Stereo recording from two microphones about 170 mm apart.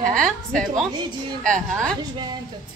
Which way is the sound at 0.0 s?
5° left (ahead or behind).